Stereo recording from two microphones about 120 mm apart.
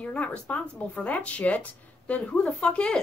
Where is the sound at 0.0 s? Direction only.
10° left (ahead or behind).